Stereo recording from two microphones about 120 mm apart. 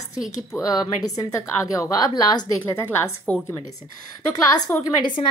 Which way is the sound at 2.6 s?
20° left (ahead or behind).